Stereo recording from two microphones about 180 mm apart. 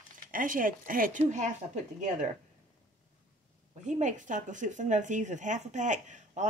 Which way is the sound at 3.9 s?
40° right (ahead or behind).